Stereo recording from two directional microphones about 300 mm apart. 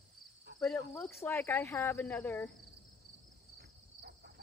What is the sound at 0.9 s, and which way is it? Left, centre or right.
Speech, centre.